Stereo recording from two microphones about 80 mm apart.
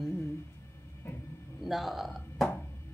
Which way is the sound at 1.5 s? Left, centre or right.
Centre.